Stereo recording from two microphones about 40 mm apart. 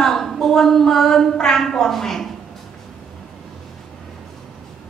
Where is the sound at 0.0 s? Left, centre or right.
Centre.